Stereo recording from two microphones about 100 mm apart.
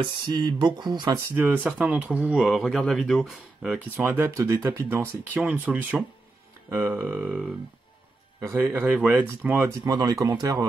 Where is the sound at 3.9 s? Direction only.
20° right (ahead or behind).